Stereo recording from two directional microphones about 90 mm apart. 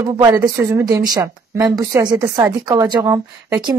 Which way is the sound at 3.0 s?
30° right (ahead or behind).